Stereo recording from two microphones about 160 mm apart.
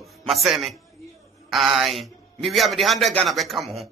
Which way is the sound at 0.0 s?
Centre (ahead or behind).